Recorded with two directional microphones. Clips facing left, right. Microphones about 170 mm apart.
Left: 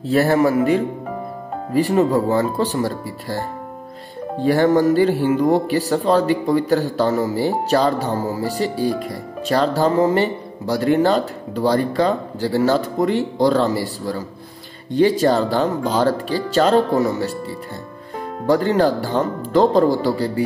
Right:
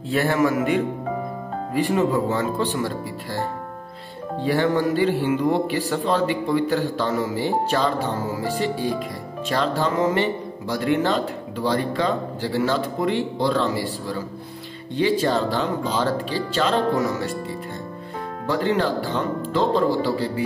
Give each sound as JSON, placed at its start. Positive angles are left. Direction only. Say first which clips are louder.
{"t": 0.1, "sound": "speech", "louder": "left 5 dB", "side_deg": 40}
{"t": 4.4, "sound": "speech", "louder": "left 5 dB", "side_deg": 45}
{"t": 18.5, "sound": "speech", "louder": "left 5 dB", "side_deg": 40}